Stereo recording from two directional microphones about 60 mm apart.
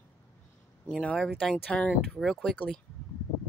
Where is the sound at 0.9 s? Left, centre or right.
Centre.